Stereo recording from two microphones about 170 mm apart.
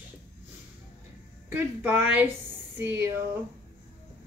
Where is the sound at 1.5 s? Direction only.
10° right (ahead or behind).